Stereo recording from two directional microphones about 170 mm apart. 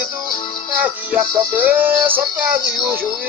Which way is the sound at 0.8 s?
10° right (ahead or behind).